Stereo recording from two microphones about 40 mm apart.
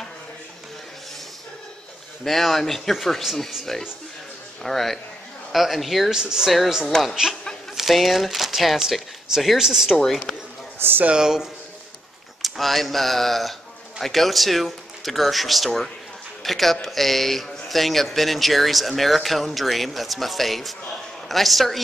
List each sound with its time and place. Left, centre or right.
2.2 s speech: centre
6.0 s speech: centre
6.9 s speech: centre
7.7 s speech: centre
9.9 s speech: centre
10.8 s speech: right
11.1 s speech: centre
12.4 s a man's voice: centre